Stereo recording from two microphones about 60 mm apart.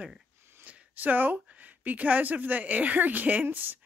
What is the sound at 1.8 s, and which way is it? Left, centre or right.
Speech, right.